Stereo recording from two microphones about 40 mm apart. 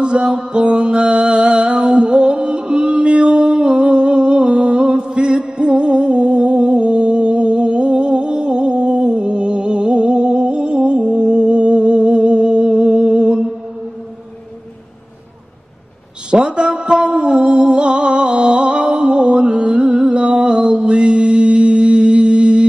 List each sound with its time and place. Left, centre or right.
0.0 s mantra: right
16.3 s music: right